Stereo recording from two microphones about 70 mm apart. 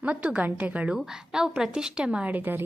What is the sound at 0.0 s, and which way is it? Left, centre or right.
Speech, centre.